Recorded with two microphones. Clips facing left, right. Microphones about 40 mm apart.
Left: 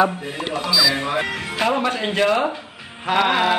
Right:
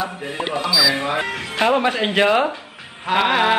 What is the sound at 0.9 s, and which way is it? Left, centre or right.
Speech, centre.